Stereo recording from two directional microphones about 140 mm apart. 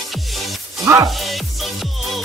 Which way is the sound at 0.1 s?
Centre (ahead or behind).